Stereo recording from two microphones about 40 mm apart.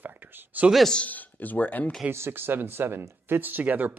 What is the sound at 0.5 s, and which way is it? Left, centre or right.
Speech, right.